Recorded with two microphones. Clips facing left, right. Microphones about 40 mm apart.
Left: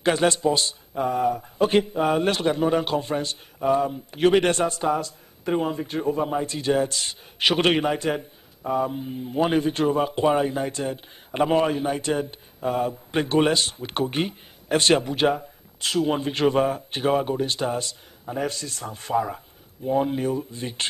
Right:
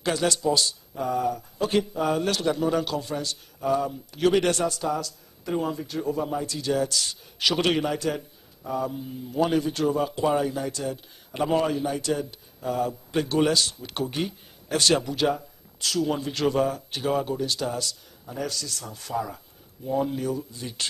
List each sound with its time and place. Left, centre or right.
0.0 s speech: left